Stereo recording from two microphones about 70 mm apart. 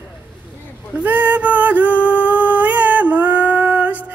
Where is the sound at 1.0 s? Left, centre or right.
Right.